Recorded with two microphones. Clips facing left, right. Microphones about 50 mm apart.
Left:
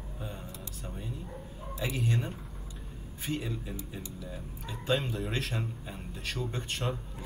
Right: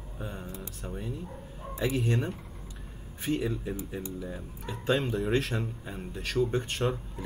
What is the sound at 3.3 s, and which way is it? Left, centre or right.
Speech, right.